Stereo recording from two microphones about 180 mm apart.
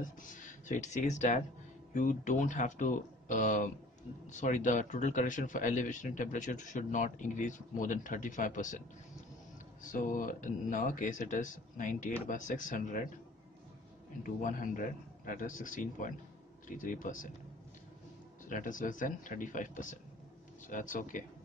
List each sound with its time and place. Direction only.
0.0 s a man's voice: 45° left (ahead or behind)
9.8 s a man's voice: 45° left (ahead or behind)
14.2 s a man's voice: 45° left (ahead or behind)
18.5 s a man's voice: 45° left (ahead or behind)